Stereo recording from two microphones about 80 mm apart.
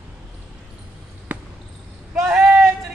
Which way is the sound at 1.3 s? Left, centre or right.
Centre.